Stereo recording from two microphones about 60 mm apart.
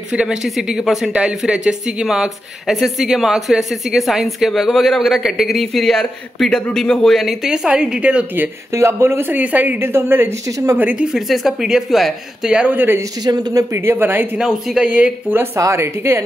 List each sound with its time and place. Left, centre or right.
0.1 s speech: centre
7.4 s a woman's voice: centre
8.7 s speech: right
9.4 s a woman's voice: right
9.8 s a woman's voice: right
11.1 s a woman's voice: centre
12.7 s a woman's voice: right
14.4 s a woman's voice: centre
15.5 s speech: right